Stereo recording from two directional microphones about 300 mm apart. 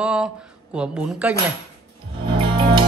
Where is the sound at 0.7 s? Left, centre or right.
Centre.